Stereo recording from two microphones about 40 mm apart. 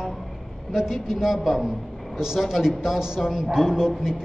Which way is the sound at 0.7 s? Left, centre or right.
Centre.